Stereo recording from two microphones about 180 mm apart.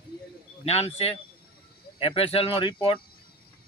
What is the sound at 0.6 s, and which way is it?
A man's voice, 35° left (ahead or behind).